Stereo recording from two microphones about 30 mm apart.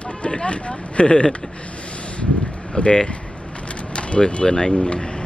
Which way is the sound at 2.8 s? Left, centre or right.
Left.